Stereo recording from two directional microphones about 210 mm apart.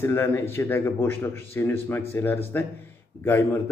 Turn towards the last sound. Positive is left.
turn(degrees=10)  # may be behind; listen again after turning